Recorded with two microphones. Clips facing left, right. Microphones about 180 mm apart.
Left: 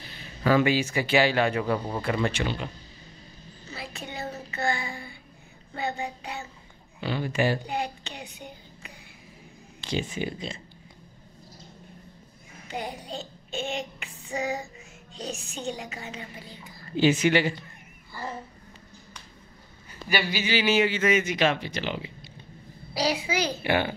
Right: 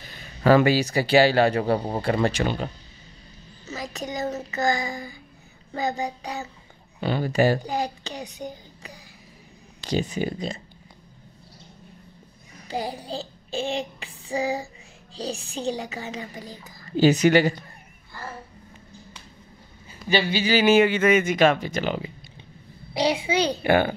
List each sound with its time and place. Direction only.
0.4 s speech: 45° right (ahead or behind)
3.6 s child singing: 40° right (ahead or behind)
5.8 s speech: 35° right (ahead or behind)
12.5 s child singing: 35° right (ahead or behind)
15.1 s speech: 35° right (ahead or behind)
18.1 s a child's voice: 10° left (ahead or behind)
20.1 s a child's voice: 25° right (ahead or behind)
20.5 s speech: 50° right (ahead or behind)
22.9 s a child's voice: 25° right (ahead or behind)
23.6 s speech: 45° right (ahead or behind)